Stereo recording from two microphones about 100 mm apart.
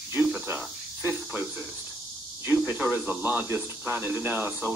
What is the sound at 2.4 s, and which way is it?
Speech, 20° right (ahead or behind).